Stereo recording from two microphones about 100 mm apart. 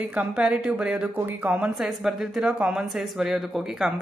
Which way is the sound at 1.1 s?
20° right (ahead or behind).